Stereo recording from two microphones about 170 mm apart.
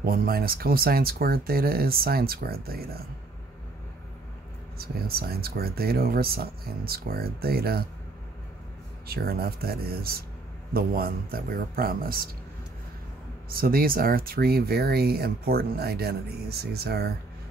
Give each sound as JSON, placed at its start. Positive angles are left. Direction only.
{"t": 0.0, "sound": "speech", "side_deg": -60}
{"t": 4.7, "sound": "speech", "side_deg": -65}
{"t": 9.0, "sound": "speech", "side_deg": -65}
{"t": 13.5, "sound": "speech", "side_deg": -60}